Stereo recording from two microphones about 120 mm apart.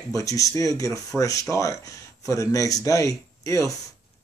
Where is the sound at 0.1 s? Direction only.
30° left (ahead or behind).